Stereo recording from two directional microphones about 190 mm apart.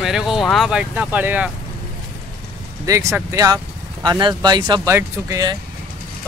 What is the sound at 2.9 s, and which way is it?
Speech, 15° right (ahead or behind).